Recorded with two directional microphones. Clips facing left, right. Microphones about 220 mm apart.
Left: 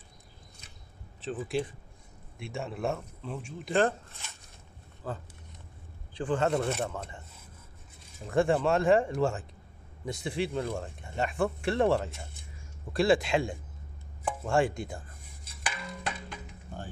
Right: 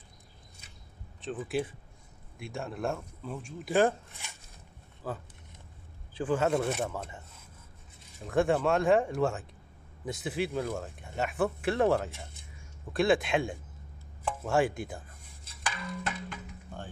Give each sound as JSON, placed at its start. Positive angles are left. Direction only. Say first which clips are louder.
{"t": 1.5, "sound": "speech", "louder": "right 1 dB", "side_deg": -5}
{"t": 3.7, "sound": "speech", "louder": "right 1 dB", "side_deg": -10}
{"t": 8.2, "sound": "speech", "louder": "left 1 dB", "side_deg": 0}
{"t": 15.6, "sound": "a sound", "louder": "right 1 dB", "side_deg": 15}